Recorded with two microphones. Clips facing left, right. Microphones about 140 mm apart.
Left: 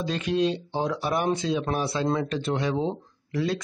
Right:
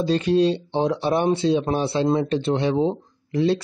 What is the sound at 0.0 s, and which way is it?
Speech, 35° right (ahead or behind).